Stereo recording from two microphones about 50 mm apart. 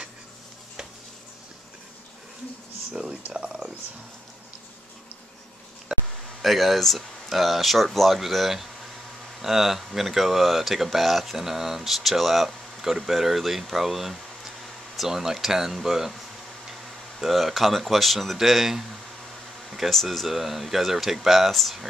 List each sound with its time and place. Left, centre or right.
2.9 s speech: centre
5.9 s a sound: centre
6.4 s speech: centre
19.9 s speech: centre